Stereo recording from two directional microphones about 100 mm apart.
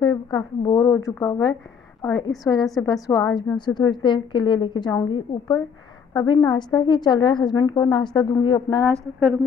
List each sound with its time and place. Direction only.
0.0 s a woman's voice: 40° left (ahead or behind)
8.9 s speech: 10° left (ahead or behind)